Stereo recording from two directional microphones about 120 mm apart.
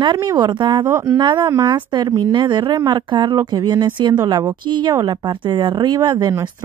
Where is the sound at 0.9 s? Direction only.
20° right (ahead or behind).